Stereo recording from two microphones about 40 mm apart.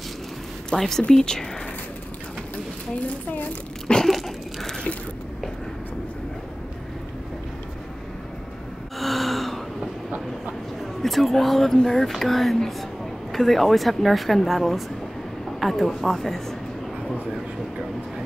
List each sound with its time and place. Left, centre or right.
0.7 s speech: centre
3.8 s a sound: centre
9.0 s gasp: centre
10.8 s a woman's voice: centre